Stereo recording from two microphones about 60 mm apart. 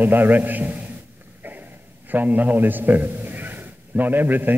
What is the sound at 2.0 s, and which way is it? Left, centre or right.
A man's voice, right.